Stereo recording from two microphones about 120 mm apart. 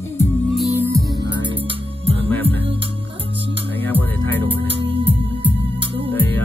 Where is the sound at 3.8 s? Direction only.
15° left (ahead or behind).